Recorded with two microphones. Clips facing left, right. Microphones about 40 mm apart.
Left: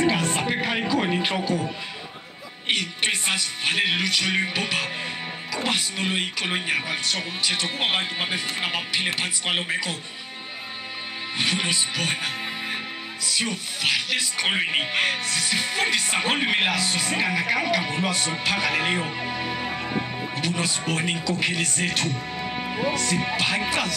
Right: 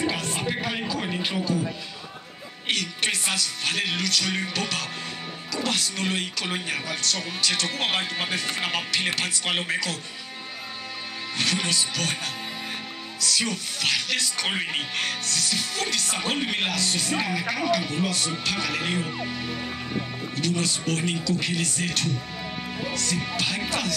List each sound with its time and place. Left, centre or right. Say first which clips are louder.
0.0 s music: left 5 dB; left
2.7 s speech: left 2 dB; centre
11.3 s speech: left 1 dB; centre